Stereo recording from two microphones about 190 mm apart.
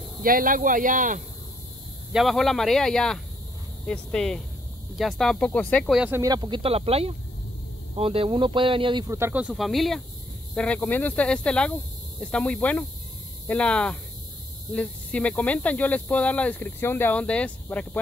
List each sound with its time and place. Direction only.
0.2 s speech: 45° right (ahead or behind)
2.1 s speech: centre (ahead or behind)
6.0 s speech: 15° right (ahead or behind); by 17.8 s 5° left (ahead or behind)